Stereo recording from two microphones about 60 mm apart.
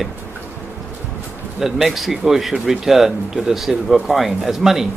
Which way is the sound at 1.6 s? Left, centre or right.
Centre.